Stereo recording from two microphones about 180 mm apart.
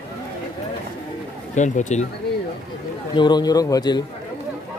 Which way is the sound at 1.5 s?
40° left (ahead or behind).